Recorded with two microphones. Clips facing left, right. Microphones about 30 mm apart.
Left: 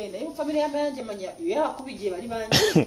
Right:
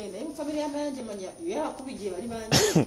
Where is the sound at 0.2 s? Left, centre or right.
Left.